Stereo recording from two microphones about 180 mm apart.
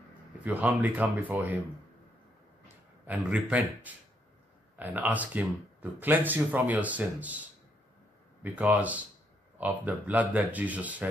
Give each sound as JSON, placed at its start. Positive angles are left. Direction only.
{"t": 0.4, "sound": "speech", "side_deg": -10}
{"t": 3.1, "sound": "speech", "side_deg": -5}
{"t": 8.4, "sound": "speech", "side_deg": -10}